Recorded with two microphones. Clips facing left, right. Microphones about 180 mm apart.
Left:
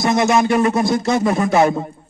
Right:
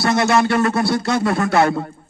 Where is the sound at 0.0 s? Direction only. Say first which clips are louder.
Left 1 dB; 20° left (ahead or behind).